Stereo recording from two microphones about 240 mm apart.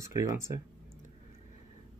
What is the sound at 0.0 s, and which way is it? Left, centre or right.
Speech, centre.